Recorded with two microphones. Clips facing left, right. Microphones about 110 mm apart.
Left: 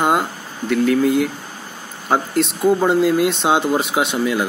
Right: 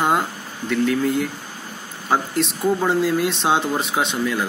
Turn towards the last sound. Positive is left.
turn(degrees=5)  # may be behind; listen again after turning